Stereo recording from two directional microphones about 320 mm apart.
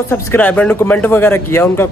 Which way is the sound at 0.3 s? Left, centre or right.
Centre.